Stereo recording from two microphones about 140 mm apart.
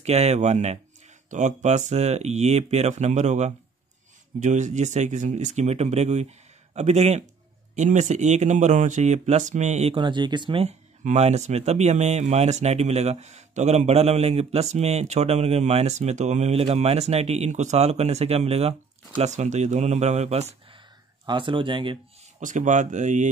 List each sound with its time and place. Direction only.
0.0 s speech: 50° right (ahead or behind)
9.9 s speech: 35° right (ahead or behind)
10.6 s speech: 50° right (ahead or behind)
21.3 s speech: 35° right (ahead or behind)
22.4 s speech: 65° right (ahead or behind)